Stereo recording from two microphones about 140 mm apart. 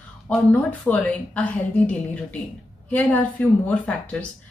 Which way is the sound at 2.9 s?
10° left (ahead or behind).